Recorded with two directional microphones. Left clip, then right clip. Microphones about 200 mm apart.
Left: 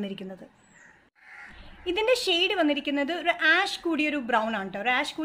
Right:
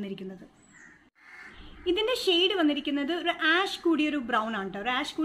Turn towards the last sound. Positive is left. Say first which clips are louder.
# left 4 dB
turn(degrees=35)  # may be behind; listen again after turning